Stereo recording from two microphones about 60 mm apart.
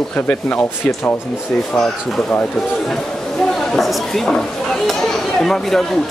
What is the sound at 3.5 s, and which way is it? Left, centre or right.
Speech, centre.